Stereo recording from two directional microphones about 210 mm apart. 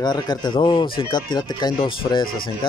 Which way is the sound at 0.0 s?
20° left (ahead or behind).